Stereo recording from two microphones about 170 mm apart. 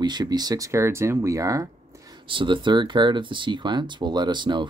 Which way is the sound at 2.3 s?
30° right (ahead or behind).